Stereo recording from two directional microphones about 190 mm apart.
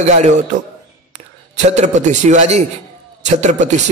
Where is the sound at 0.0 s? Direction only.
40° right (ahead or behind).